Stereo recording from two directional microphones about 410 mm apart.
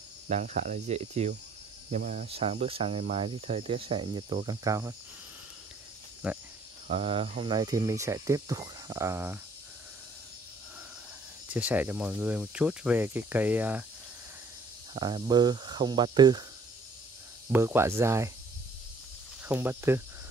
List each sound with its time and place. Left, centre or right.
0.3 s cricket: centre
6.2 s speech: centre
6.9 s cricket: centre
11.5 s speech: centre
15.0 s cricket: centre
17.5 s cricket: centre
19.4 s speech: centre